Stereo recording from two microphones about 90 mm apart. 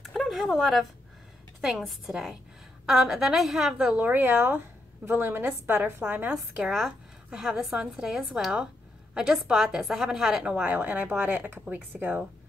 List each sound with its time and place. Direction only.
0.0 s a sound: centre (ahead or behind)
1.6 s a woman's voice: 5° right (ahead or behind)
4.0 s a woman's voice: 20° right (ahead or behind)
6.3 s a woman's voice: 5° right (ahead or behind)
10.6 s speech: 20° right (ahead or behind)